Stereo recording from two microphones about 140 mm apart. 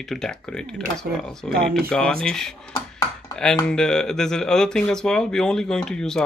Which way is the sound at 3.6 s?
5° left (ahead or behind).